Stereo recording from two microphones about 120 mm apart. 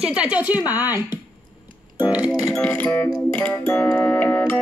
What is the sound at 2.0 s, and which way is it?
Speech, 10° right (ahead or behind).